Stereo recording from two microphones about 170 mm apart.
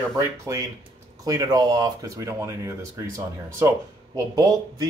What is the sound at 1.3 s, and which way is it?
Speech, 20° right (ahead or behind).